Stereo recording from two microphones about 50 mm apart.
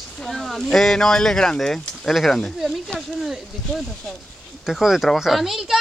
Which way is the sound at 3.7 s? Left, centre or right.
Centre.